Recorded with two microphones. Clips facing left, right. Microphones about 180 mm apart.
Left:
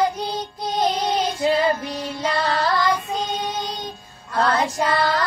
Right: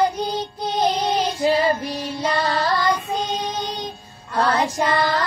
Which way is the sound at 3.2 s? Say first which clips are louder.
Right 1 dB; 35° right (ahead or behind).